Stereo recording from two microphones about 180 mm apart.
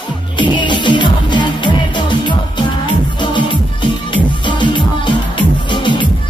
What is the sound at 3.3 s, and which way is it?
Music, 25° left (ahead or behind).